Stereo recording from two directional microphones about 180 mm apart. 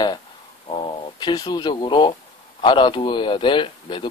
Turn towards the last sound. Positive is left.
turn(degrees=25)  # may be behind; listen again after turning